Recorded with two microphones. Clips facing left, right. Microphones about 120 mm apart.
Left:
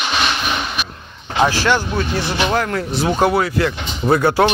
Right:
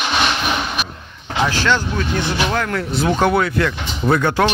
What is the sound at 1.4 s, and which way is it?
Speech, 15° left (ahead or behind).